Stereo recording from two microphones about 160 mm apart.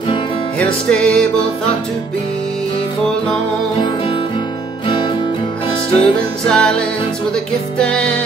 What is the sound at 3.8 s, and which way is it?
Music, 30° left (ahead or behind).